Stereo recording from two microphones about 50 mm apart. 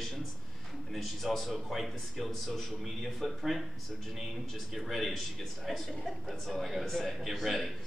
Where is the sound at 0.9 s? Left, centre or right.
Centre.